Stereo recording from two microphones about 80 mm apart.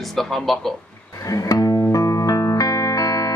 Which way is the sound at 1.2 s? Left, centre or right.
Left.